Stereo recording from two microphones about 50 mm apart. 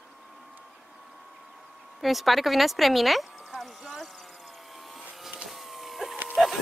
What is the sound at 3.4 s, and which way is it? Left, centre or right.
Vehicle, centre.